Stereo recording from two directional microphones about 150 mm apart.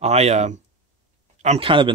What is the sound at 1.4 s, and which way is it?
Speech, 35° right (ahead or behind).